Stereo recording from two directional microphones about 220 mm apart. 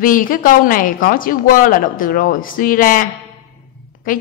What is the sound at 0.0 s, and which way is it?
Speech, 40° left (ahead or behind).